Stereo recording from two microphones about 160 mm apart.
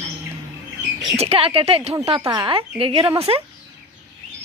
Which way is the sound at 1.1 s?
40° right (ahead or behind).